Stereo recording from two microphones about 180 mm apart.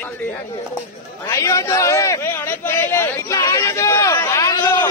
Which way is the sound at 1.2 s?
15° left (ahead or behind).